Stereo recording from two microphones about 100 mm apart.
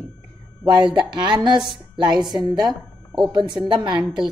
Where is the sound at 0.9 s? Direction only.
50° right (ahead or behind).